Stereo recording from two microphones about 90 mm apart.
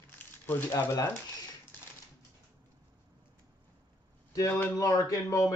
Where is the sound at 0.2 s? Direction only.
20° left (ahead or behind).